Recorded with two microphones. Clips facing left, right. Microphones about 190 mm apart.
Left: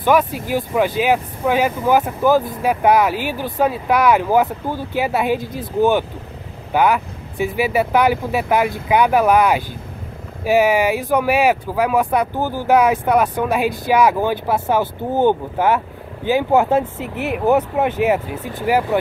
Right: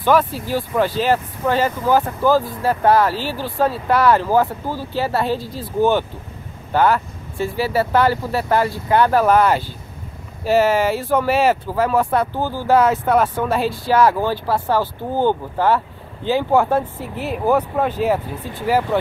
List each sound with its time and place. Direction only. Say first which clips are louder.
0.0 s speech: left 1 dB; 15° left (ahead or behind)